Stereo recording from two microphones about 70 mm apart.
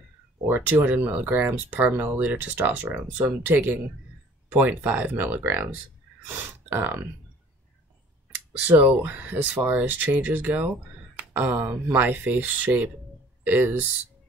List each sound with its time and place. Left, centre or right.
0.8 s speech: right
8.6 s speech: right
11.1 s a sound: right
11.6 s speech: right